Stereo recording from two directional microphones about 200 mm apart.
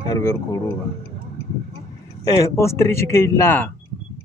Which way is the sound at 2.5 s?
15° left (ahead or behind).